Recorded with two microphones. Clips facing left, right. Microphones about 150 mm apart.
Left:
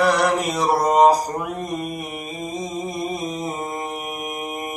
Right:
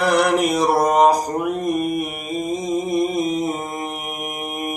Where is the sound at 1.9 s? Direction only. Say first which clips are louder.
Right 6 dB; 65° right (ahead or behind).